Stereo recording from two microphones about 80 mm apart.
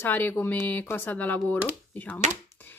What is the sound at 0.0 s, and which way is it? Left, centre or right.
Speech, left.